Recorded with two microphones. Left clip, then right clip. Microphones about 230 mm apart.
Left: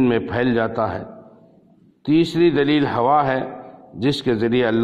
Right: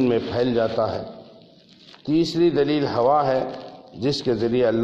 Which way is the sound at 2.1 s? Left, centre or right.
Left.